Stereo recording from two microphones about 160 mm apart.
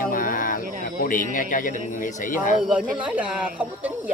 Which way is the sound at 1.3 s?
55° left (ahead or behind).